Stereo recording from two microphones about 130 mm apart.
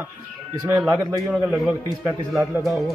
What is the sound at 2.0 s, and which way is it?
Speech, 15° right (ahead or behind).